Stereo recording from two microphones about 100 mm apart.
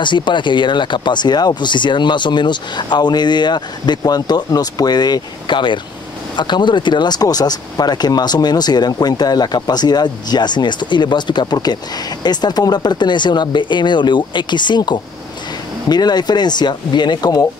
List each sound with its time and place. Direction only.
0.0 s speech: 50° left (ahead or behind)